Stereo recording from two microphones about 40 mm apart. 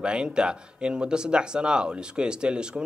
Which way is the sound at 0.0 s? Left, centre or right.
Right.